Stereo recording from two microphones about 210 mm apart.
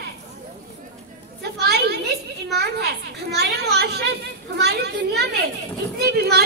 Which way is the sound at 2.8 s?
50° right (ahead or behind).